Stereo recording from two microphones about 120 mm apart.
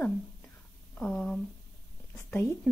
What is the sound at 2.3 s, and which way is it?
Speech, 20° left (ahead or behind).